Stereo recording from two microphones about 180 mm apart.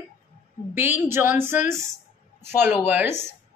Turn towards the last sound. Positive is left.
turn(degrees=-10)  # may be behind; listen again after turning